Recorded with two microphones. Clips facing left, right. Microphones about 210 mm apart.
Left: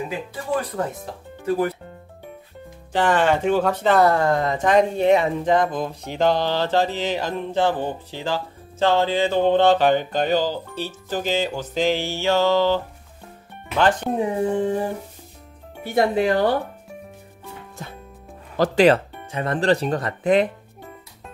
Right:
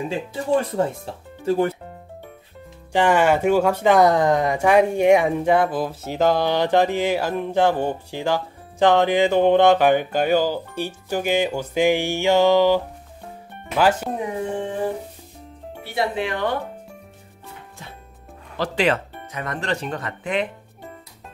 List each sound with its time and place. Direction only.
0.1 s speech: 30° right (ahead or behind)
2.9 s speech: 10° right (ahead or behind)
14.2 s speech: 35° left (ahead or behind)
15.8 s speech: 45° left (ahead or behind)
18.6 s speech: 40° left (ahead or behind)